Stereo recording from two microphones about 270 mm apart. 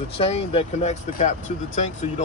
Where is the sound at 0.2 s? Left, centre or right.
Left.